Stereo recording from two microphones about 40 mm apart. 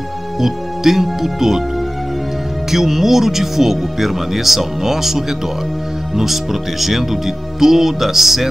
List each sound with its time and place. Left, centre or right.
0.4 s speech: centre
2.7 s speech: centre